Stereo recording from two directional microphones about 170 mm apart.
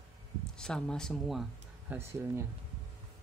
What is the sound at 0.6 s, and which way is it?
Speech, 5° left (ahead or behind).